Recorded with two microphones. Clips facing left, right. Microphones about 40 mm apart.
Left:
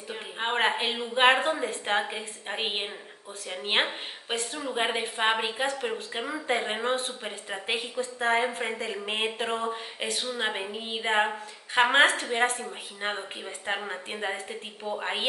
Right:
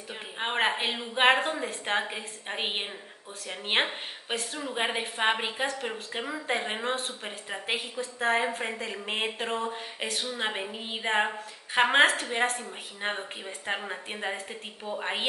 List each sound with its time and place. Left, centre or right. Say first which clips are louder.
0.1 s a woman's voice: left 2 dB; centre